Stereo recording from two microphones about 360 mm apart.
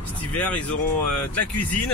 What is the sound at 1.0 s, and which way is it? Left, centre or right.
Speech, left.